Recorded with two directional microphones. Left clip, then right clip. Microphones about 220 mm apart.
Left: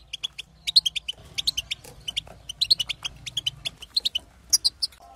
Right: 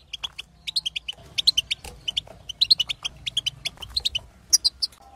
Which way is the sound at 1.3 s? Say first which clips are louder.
Right 6 dB; 20° right (ahead or behind).